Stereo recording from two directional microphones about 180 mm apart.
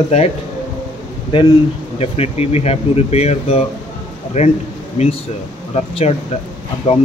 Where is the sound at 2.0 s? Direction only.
35° left (ahead or behind).